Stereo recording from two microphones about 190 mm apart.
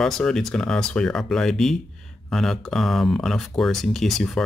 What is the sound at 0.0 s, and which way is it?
Speech, centre (ahead or behind).